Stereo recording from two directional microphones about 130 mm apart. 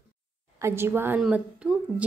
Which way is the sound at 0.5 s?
20° right (ahead or behind).